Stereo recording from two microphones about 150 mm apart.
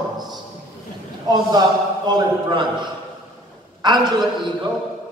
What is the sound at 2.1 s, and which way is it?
A man's voice, 30° right (ahead or behind).